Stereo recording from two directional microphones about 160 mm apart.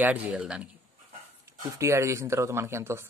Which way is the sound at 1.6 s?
20° right (ahead or behind).